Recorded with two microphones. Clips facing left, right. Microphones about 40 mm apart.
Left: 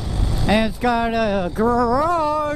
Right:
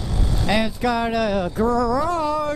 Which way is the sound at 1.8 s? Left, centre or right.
Left.